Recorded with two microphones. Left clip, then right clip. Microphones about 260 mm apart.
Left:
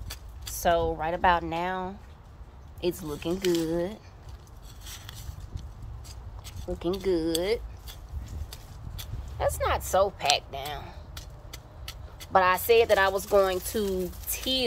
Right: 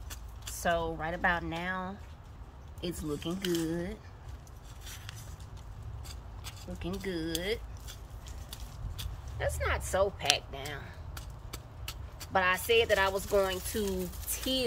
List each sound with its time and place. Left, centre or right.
0.6 s speech: centre
2.9 s speech: left
6.8 s speech: centre
9.4 s speech: centre
11.5 s vehicle: centre
12.3 s speech: centre